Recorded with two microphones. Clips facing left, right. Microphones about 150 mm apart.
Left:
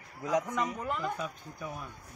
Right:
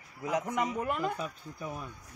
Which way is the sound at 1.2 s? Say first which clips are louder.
Even; centre (ahead or behind).